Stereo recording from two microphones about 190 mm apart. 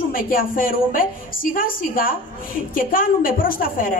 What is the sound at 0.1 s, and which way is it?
A woman's voice, 50° left (ahead or behind).